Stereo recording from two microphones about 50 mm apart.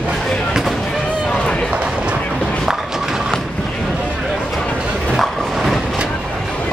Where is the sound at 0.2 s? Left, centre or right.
Centre.